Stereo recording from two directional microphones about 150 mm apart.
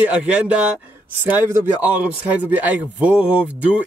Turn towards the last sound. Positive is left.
turn(degrees=-10)  # may be behind; listen again after turning